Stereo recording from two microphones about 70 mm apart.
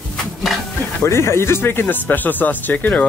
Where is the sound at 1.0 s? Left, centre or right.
Left.